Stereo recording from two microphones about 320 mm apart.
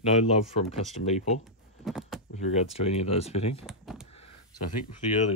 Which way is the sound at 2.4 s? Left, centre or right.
Centre.